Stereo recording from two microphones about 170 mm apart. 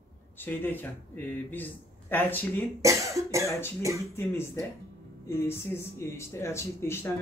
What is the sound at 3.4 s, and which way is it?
Speech, 15° left (ahead or behind).